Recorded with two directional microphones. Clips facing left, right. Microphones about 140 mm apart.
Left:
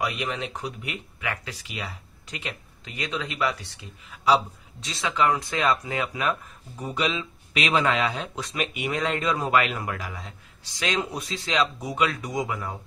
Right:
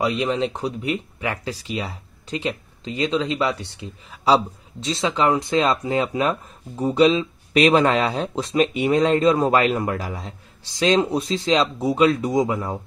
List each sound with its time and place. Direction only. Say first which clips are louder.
0.0 s speech: right 8 dB; 30° right (ahead or behind)